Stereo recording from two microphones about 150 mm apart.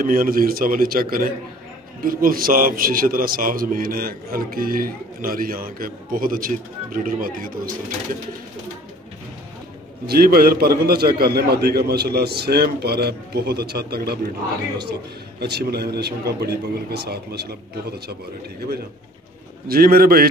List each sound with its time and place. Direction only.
0.0 s a man's voice: 70° right (ahead or behind)
10.0 s a man's voice: 90° right
15.4 s a man's voice: 90° right
19.7 s a man's voice: 85° right